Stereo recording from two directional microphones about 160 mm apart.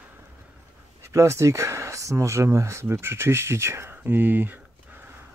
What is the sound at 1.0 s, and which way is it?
Speech, 15° right (ahead or behind).